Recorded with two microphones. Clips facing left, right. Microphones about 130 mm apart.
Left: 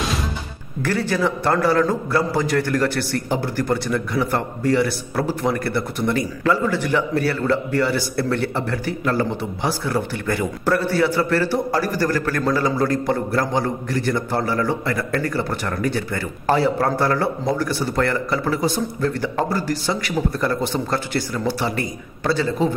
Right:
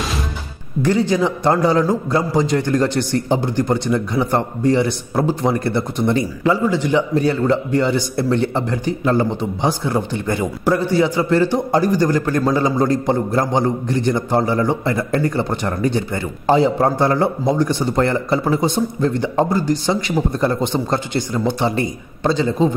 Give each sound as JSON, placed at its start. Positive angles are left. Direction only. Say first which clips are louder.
{"t": 0.8, "sound": "a man's voice", "louder": "right 4 dB", "side_deg": -15}